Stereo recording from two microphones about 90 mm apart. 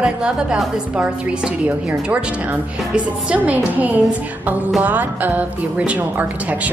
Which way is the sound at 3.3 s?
15° right (ahead or behind).